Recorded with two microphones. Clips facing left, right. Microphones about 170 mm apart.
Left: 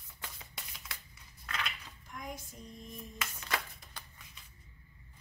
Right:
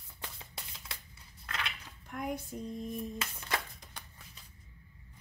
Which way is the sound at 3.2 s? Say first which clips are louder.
Right 1 dB; 20° right (ahead or behind).